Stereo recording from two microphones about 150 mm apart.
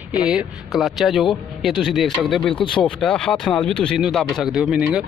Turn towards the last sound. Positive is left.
turn(degrees=-5)  # may be behind; listen again after turning